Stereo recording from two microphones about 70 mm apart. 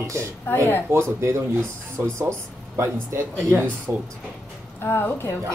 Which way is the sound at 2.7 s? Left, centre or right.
Right.